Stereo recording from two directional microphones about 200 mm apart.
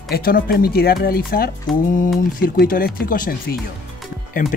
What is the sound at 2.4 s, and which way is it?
Speech, 45° left (ahead or behind).